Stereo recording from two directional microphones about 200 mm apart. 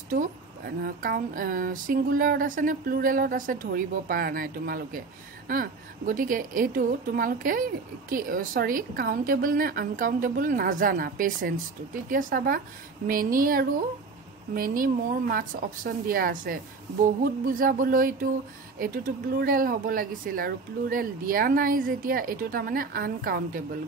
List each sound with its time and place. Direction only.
0.1 s a woman's voice: 50° right (ahead or behind)